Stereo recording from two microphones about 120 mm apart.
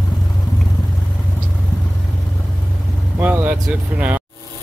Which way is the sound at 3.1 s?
15° right (ahead or behind).